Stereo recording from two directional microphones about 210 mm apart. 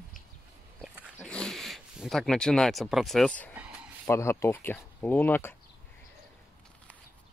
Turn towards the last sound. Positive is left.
turn(degrees=10)  # may be behind; listen again after turning